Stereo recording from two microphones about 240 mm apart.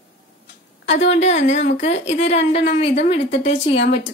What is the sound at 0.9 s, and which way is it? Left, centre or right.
A woman's voice, left.